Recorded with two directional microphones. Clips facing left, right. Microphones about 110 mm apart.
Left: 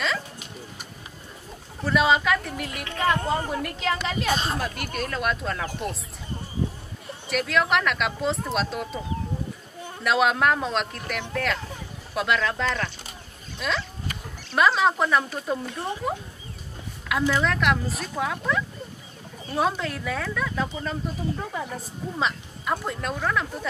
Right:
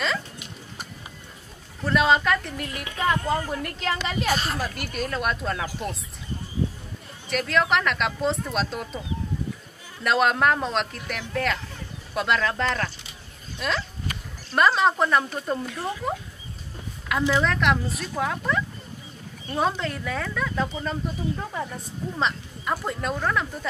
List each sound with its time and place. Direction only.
1.9 s speech: centre (ahead or behind)
4.3 s speech: 20° left (ahead or behind)
4.6 s speech: centre (ahead or behind)
7.2 s speech: centre (ahead or behind)
10.0 s speech: centre (ahead or behind)
17.1 s speech: centre (ahead or behind)